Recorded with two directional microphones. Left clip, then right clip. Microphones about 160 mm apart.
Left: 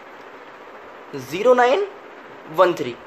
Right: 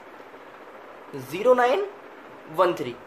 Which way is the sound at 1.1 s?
25° left (ahead or behind).